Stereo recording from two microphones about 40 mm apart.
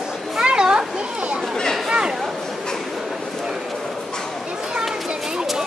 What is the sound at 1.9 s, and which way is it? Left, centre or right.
Chatter, right.